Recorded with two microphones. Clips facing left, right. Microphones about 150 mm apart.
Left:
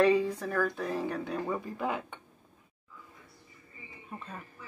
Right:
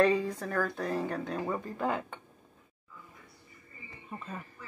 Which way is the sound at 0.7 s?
5° left (ahead or behind).